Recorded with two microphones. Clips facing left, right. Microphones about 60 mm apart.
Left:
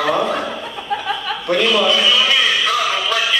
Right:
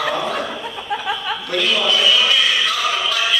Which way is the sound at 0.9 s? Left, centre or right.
Centre.